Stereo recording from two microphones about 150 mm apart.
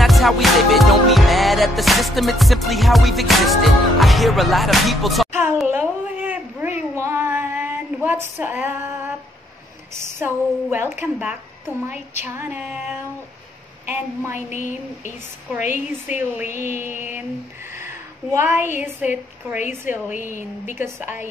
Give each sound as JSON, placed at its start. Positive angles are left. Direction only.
{"t": 0.0, "sound": "music", "side_deg": 0}
{"t": 5.7, "sound": "a sound", "side_deg": -10}
{"t": 10.0, "sound": "a woman's voice", "side_deg": -15}
{"t": 13.8, "sound": "a woman's voice", "side_deg": -15}
{"t": 14.5, "sound": "speech", "side_deg": 55}
{"t": 15.5, "sound": "a woman's voice", "side_deg": -10}
{"t": 20.2, "sound": "speech", "side_deg": 60}
{"t": 20.6, "sound": "a woman's voice", "side_deg": -15}